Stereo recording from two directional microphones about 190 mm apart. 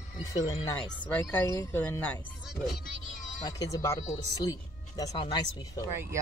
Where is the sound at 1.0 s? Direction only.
10° left (ahead or behind).